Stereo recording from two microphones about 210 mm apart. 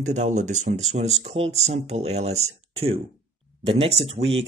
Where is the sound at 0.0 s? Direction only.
35° right (ahead or behind).